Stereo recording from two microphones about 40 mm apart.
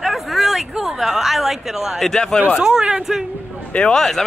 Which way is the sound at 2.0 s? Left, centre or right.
Centre.